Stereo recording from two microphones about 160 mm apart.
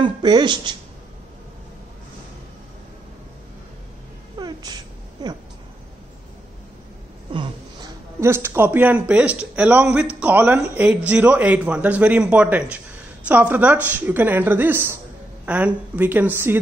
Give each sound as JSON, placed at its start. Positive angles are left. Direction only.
{"t": 0.0, "sound": "speech", "side_deg": -30}
{"t": 4.4, "sound": "a sound", "side_deg": -25}
{"t": 7.3, "sound": "a man's voice", "side_deg": -20}